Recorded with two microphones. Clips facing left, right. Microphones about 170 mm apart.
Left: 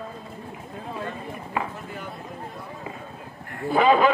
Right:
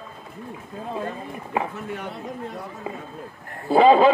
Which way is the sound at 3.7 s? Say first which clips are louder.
Right 4 dB; 30° right (ahead or behind).